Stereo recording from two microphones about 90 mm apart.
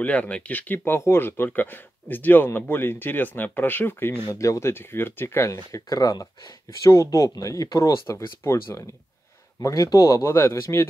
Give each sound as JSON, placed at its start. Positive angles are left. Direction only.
{"t": 0.0, "sound": "speech", "side_deg": 15}
{"t": 4.3, "sound": "speech", "side_deg": 35}